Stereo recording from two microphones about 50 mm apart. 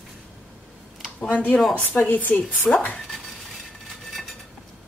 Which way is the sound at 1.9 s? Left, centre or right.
Left.